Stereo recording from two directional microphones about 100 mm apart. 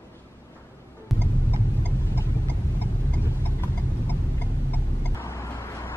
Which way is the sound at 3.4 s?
20° left (ahead or behind).